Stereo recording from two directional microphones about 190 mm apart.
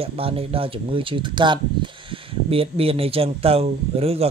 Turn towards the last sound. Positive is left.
turn(degrees=-30)  # may be behind; listen again after turning